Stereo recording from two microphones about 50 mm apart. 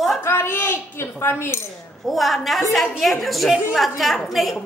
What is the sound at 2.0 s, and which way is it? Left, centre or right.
Speech, centre.